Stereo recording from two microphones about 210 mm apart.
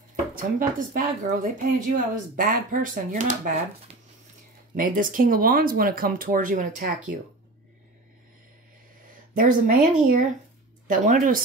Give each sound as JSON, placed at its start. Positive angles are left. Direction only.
{"t": 0.1, "sound": "speech", "side_deg": -40}
{"t": 9.3, "sound": "speech", "side_deg": -40}